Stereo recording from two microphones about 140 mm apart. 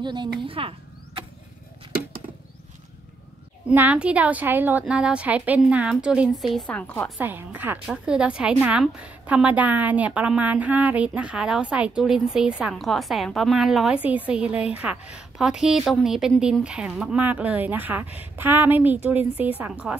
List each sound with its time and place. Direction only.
0.0 s speech: 30° right (ahead or behind)
3.6 s a woman's voice: 10° right (ahead or behind); by 7.1 s 10° left (ahead or behind)
7.2 s a woman's voice: 15° right (ahead or behind)